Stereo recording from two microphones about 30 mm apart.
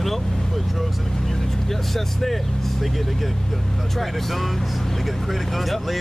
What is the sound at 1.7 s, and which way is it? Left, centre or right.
Speech, centre.